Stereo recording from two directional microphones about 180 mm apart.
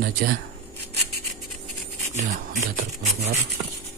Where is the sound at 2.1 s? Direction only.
40° right (ahead or behind).